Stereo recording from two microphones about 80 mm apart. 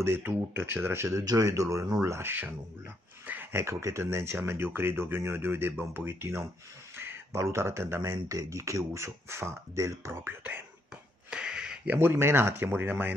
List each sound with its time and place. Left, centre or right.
0.0 s speech: right
1.1 s speech: right
2.0 s speech: right
3.3 s a sound: right
3.6 s speech: right
11.2 s a sound: centre
12.0 s speech: right